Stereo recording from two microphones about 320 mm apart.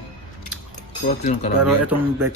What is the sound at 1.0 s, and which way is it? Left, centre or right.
Speech, left.